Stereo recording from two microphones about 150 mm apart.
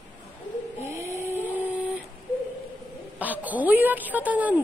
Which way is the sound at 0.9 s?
20° right (ahead or behind).